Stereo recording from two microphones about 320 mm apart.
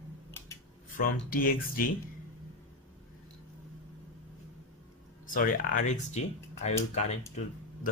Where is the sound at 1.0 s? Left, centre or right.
Left.